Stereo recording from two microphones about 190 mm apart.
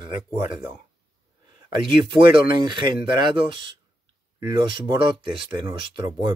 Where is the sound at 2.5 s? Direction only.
25° right (ahead or behind).